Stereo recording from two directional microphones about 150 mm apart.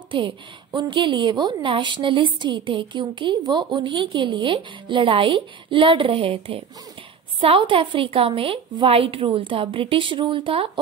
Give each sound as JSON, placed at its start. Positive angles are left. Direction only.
{"t": 0.7, "sound": "a woman's voice", "side_deg": -35}